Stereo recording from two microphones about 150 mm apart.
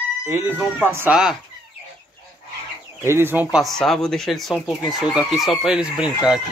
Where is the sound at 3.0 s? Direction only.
15° right (ahead or behind).